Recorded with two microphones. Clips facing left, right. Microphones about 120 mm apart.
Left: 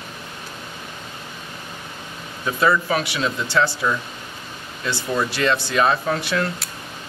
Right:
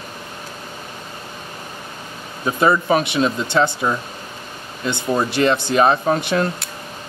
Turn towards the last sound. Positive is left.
turn(degrees=-25)  # may be behind; listen again after turning